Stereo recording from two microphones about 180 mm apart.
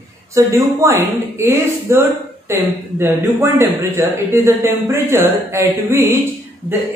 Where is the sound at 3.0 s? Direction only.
10° right (ahead or behind).